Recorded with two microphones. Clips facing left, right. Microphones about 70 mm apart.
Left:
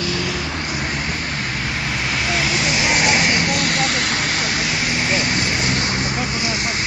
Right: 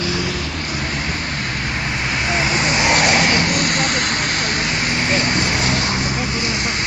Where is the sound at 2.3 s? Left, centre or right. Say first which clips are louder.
Right 3 dB; right.